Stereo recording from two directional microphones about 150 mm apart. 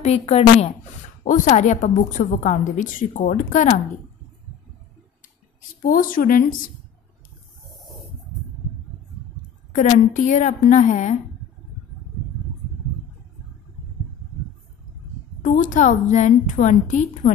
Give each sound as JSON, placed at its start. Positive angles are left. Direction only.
{"t": 0.3, "sound": "a woman's voice", "side_deg": 45}
{"t": 1.2, "sound": "a woman's voice", "side_deg": 60}
{"t": 5.9, "sound": "speech", "side_deg": 70}
{"t": 9.7, "sound": "a woman's voice", "side_deg": 55}
{"t": 15.4, "sound": "a woman's voice", "side_deg": 60}